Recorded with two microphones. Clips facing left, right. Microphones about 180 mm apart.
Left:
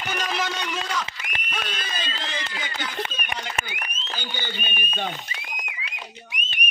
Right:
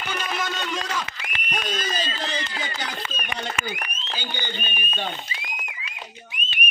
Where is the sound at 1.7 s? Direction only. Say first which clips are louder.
Right 5 dB; 40° right (ahead or behind).